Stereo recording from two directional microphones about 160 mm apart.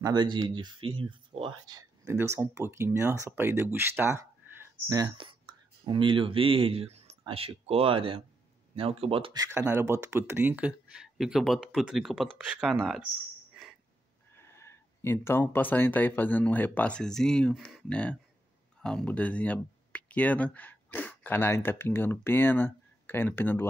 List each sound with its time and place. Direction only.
0.0 s speech: 30° right (ahead or behind)
1.8 s a sound: 15° right (ahead or behind)
2.3 s speech: 15° right (ahead or behind); by 9.4 s 35° right (ahead or behind)
9.4 s speech: 15° right (ahead or behind); by 13.0 s centre (ahead or behind)
13.5 s a sound: 5° right (ahead or behind)
14.3 s speech: 15° left (ahead or behind)